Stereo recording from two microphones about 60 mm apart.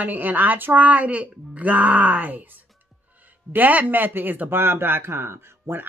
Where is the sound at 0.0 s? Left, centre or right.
Right.